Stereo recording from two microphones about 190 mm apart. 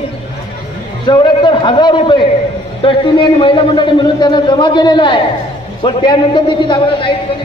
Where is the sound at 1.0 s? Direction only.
25° left (ahead or behind).